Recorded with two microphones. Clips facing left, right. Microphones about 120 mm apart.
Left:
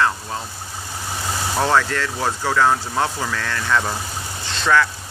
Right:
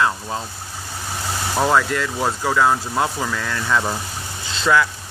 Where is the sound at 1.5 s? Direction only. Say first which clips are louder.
Right 1 dB; 10° right (ahead or behind).